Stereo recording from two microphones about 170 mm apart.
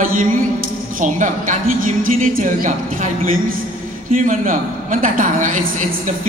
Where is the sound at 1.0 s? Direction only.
45° right (ahead or behind).